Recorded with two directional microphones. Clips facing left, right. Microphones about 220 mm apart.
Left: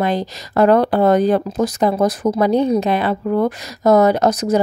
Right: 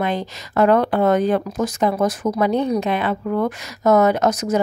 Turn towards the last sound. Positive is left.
turn(degrees=35)  # may be behind; listen again after turning